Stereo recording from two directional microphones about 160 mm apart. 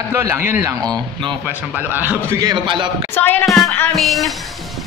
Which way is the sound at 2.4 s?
30° right (ahead or behind).